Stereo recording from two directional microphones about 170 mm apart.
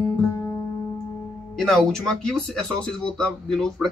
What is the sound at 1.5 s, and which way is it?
Speech, 5° left (ahead or behind).